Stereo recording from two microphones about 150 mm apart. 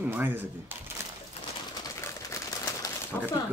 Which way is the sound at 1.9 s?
20° left (ahead or behind).